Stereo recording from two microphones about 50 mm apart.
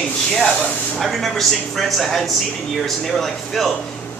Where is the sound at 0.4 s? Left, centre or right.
Centre.